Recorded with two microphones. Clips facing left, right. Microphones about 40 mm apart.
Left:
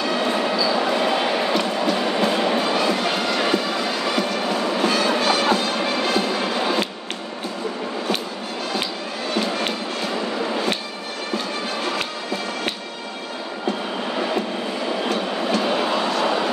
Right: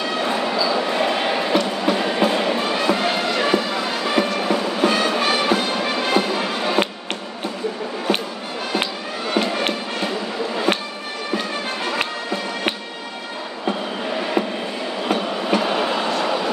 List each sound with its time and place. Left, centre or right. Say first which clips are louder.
0.3 s train: even; centre
0.9 s a sound: even; centre
1.9 s train: right 3 dB; centre
2.7 s music: right 1 dB; centre
9.3 s fireworks: right 3 dB; right
11.3 s music: right 1 dB; right
15.0 s a sound: right 5 dB; centre